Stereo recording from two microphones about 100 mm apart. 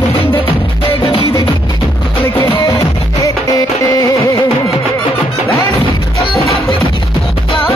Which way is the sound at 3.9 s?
30° left (ahead or behind).